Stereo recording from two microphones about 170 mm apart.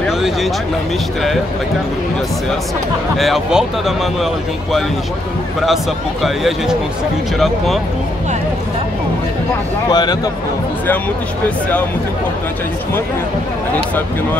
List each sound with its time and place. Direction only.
3.2 s speech: centre (ahead or behind)
6.2 s speech: centre (ahead or behind)
9.8 s speech: 25° left (ahead or behind)